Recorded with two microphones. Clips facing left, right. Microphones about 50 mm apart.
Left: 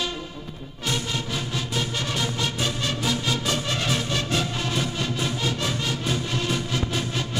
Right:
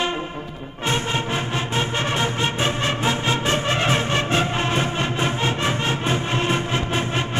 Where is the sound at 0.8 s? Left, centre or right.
Right.